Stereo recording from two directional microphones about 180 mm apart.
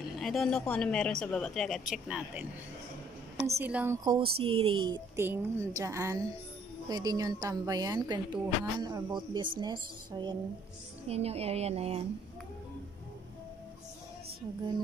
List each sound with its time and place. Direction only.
0.2 s speech: centre (ahead or behind)
3.4 s a woman's voice: 10° right (ahead or behind)
4.0 s a woman's voice: 30° right (ahead or behind)
5.2 s a woman's voice: 15° right (ahead or behind)
11.1 s a woman's voice: 35° right (ahead or behind)